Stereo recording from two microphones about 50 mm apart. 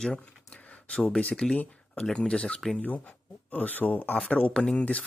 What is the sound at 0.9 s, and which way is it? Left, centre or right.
Speech, centre.